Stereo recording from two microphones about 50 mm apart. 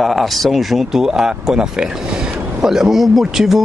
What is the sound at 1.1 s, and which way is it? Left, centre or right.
Speech, centre.